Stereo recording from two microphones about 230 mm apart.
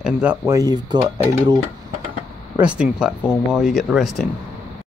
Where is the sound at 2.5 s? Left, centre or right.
Centre.